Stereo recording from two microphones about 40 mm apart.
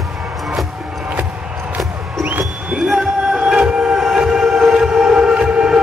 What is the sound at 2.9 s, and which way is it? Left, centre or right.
Music, centre.